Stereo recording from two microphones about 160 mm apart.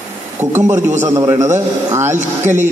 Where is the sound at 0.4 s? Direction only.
10° right (ahead or behind).